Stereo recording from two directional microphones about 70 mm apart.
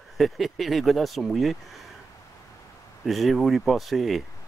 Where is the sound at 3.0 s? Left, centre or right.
Centre.